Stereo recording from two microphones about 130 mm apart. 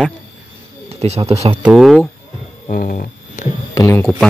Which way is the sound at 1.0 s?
50° right (ahead or behind).